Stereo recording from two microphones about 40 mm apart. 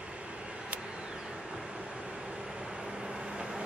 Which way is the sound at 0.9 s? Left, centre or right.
Centre.